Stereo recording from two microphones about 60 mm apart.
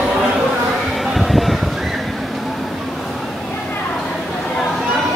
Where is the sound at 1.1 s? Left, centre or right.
Centre.